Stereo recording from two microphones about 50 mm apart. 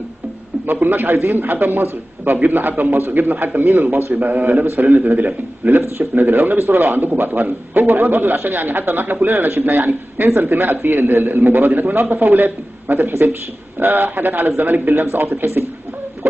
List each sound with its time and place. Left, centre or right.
0.7 s a man's voice: right